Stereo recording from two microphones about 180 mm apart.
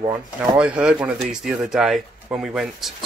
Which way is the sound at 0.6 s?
5° right (ahead or behind).